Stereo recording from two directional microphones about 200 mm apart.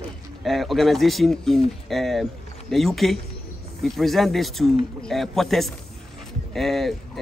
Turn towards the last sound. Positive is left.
turn(degrees=0)  # may be behind; listen again after turning